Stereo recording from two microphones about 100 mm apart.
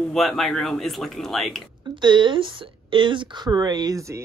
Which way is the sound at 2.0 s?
50° right (ahead or behind).